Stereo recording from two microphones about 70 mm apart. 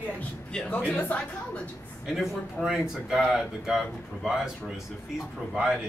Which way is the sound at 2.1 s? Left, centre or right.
Centre.